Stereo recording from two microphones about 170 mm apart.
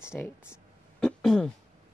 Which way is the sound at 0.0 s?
15° left (ahead or behind).